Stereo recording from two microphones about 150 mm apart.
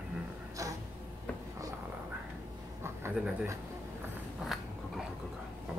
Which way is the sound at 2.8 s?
15° right (ahead or behind).